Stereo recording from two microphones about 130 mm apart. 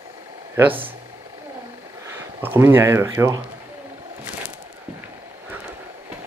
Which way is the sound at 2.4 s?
15° right (ahead or behind).